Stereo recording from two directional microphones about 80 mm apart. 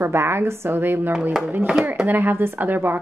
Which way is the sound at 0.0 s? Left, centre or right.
Right.